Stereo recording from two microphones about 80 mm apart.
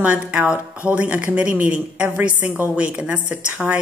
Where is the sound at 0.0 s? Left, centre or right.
Centre.